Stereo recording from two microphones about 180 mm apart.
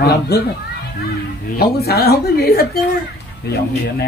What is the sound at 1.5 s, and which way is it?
Speech, 60° left (ahead or behind).